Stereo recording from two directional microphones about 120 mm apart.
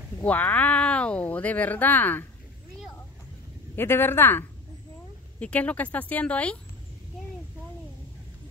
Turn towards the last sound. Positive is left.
turn(degrees=10)  # may be behind; listen again after turning